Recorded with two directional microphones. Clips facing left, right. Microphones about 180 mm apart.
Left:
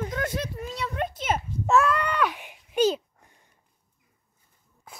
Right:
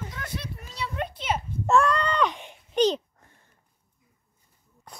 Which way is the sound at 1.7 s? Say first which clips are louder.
Even; 5° left (ahead or behind).